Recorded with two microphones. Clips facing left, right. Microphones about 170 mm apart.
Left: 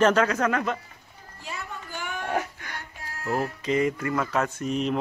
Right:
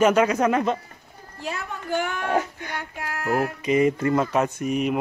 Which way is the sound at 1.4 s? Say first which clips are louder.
Right 6 dB; 70° right (ahead or behind).